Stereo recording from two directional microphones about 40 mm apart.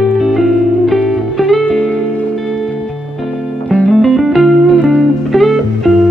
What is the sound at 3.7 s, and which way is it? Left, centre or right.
Music, left.